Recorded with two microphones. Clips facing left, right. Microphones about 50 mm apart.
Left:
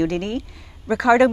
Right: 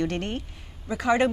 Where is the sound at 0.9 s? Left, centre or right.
Left.